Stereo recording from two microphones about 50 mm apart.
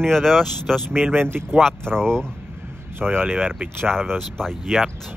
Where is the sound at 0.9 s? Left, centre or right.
Right.